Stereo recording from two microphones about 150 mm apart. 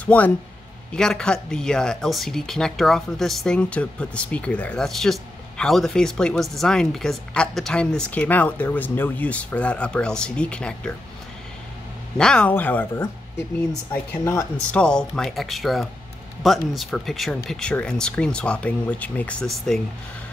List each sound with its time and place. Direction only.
0.0 s speech: 10° left (ahead or behind)
12.2 s speech: 5° left (ahead or behind)
14.2 s speech: 20° left (ahead or behind)
14.7 s speech: 5° left (ahead or behind)